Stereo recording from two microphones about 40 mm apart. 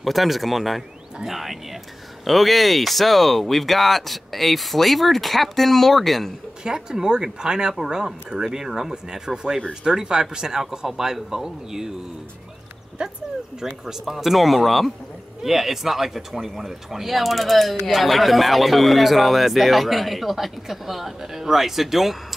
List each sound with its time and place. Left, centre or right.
0.0 s speech: centre
6.6 s speech: centre
13.0 s speech: right
13.8 s speech: centre